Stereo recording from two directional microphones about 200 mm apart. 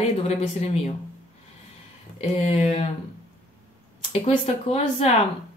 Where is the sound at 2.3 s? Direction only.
30° left (ahead or behind).